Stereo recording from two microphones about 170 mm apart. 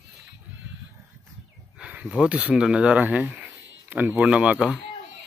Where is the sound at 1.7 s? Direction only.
5° right (ahead or behind).